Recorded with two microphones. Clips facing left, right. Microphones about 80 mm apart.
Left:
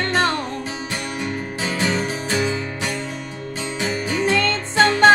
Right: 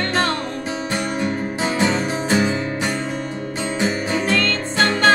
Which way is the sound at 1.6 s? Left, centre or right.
Right.